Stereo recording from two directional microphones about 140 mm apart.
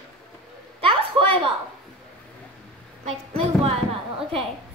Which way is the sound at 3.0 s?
45° right (ahead or behind).